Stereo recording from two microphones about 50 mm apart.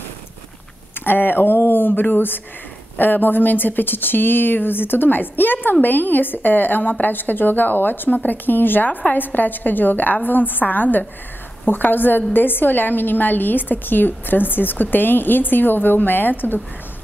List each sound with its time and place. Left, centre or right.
1.0 s speech: left